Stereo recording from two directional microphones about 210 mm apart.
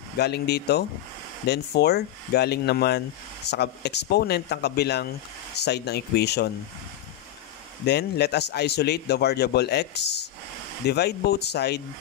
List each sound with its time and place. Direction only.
0.2 s a man's voice: 50° left (ahead or behind)
7.8 s a man's voice: 50° left (ahead or behind)